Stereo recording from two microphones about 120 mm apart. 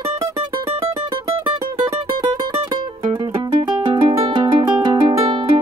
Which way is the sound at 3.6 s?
40° right (ahead or behind).